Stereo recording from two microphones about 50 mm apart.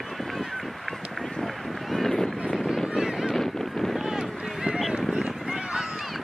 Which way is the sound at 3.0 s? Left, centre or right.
Centre.